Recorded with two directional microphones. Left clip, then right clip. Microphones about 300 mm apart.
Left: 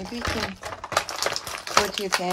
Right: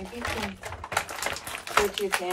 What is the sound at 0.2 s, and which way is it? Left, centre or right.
Typewriter, left.